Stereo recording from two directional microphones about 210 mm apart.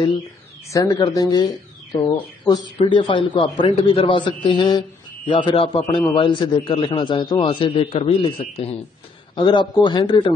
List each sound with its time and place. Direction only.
0.7 s speech: 15° left (ahead or behind)